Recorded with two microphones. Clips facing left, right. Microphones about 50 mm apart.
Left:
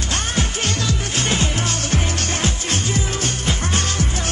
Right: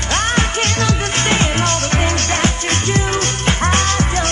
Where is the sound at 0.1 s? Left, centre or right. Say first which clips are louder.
Right 7 dB; right.